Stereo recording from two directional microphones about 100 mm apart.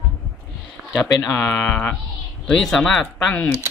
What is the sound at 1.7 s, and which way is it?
Speech, 15° left (ahead or behind).